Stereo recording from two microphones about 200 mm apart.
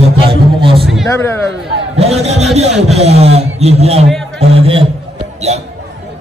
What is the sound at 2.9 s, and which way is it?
A man's voice, 30° right (ahead or behind).